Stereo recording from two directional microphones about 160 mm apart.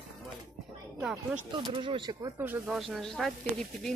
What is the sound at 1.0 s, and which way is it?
Speech, centre (ahead or behind).